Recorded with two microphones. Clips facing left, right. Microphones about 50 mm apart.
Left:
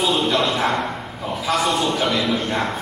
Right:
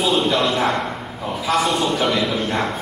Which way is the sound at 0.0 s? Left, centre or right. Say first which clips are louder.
Right 1 dB; centre.